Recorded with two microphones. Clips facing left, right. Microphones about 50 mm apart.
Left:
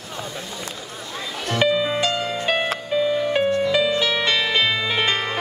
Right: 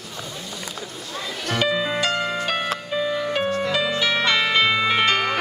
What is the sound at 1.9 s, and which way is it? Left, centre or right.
Music, right.